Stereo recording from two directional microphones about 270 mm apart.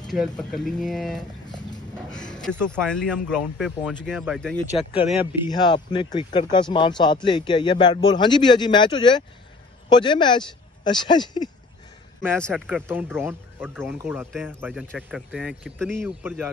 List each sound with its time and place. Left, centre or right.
0.1 s speech: centre
2.1 s music: centre
2.4 s speech: centre
4.9 s a man's voice: centre
12.4 s a man's voice: centre